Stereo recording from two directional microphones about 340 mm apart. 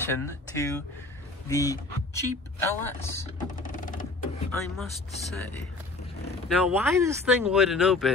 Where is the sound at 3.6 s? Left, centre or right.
Left.